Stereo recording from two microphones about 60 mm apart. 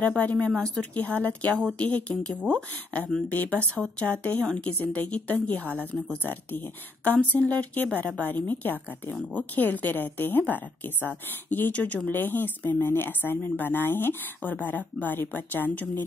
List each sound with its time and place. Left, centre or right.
0.0 s a woman's voice: left
5.6 s a woman's voice: right
6.2 s a woman's voice: left